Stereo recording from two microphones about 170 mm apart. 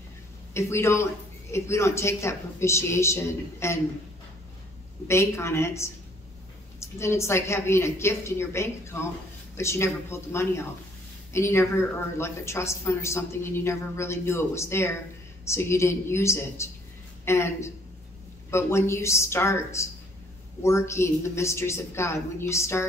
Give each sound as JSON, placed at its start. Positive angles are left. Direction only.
{"t": 0.6, "sound": "a woman's voice", "side_deg": 15}
{"t": 5.0, "sound": "a woman's voice", "side_deg": 15}